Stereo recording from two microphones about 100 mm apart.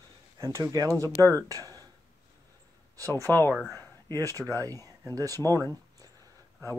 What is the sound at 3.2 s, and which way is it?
Speech, 20° left (ahead or behind).